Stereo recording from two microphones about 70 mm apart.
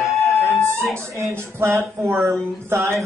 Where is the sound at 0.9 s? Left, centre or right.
Right.